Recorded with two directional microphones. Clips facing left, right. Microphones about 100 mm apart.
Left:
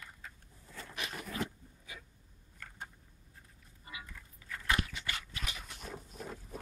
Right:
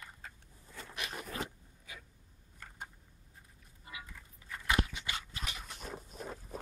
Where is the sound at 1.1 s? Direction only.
30° right (ahead or behind).